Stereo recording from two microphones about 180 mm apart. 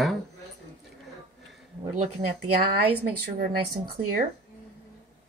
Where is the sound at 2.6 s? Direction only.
60° right (ahead or behind).